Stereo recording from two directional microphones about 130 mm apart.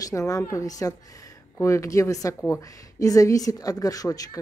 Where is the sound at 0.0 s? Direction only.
25° left (ahead or behind).